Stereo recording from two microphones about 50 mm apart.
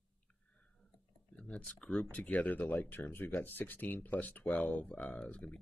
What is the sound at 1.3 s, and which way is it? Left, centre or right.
Speech, left.